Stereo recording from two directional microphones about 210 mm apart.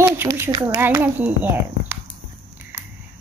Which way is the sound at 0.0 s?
10° right (ahead or behind).